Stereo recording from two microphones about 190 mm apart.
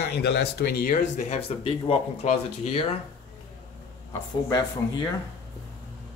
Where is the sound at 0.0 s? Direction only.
60° left (ahead or behind); by 3.0 s 35° left (ahead or behind).